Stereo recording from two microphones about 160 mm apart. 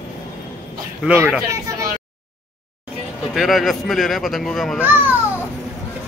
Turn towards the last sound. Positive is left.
turn(degrees=-10)  # may be behind; listen again after turning